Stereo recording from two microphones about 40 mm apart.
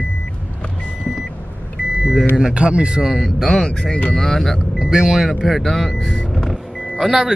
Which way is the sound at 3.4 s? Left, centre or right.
Centre.